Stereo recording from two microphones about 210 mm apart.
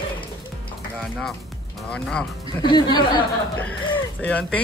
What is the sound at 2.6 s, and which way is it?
Speech, 20° left (ahead or behind).